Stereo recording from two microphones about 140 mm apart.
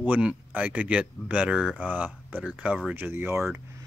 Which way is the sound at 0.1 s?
10° right (ahead or behind).